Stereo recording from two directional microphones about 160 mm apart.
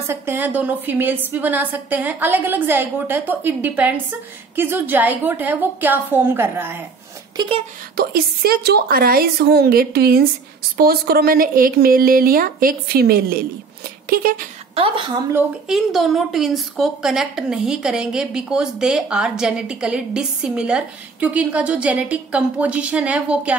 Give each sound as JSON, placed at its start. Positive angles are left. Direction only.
{"t": 0.0, "sound": "a woman's voice", "side_deg": -15}
{"t": 7.3, "sound": "a woman's voice", "side_deg": -35}
{"t": 7.9, "sound": "a woman's voice", "side_deg": -75}
{"t": 14.8, "sound": "a woman's voice", "side_deg": -30}
{"t": 15.7, "sound": "a woman's voice", "side_deg": 0}